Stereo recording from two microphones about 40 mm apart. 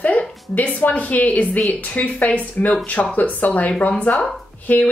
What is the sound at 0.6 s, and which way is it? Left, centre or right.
Speech, left.